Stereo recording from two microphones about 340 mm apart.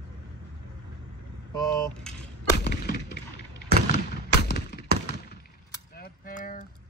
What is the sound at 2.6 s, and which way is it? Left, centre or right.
Fireworks, left.